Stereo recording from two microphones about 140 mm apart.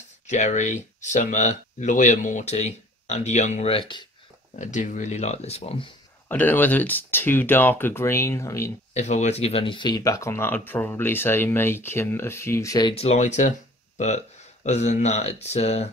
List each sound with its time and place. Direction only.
0.3 s speech: 60° left (ahead or behind)
3.7 s speech: 35° left (ahead or behind)
4.6 s speech: 60° left (ahead or behind); by 5.9 s 45° left (ahead or behind)
6.2 s speech: 15° left (ahead or behind)
8.9 s speech: 55° left (ahead or behind); by 12.9 s 25° left (ahead or behind)
12.9 s speech: 45° left (ahead or behind)